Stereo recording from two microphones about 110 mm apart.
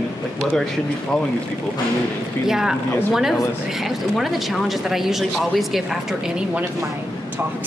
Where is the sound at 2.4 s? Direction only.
5° right (ahead or behind).